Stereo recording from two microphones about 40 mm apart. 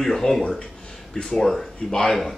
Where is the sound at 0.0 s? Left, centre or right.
Centre.